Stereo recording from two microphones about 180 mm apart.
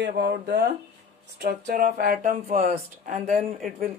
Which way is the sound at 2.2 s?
50° right (ahead or behind).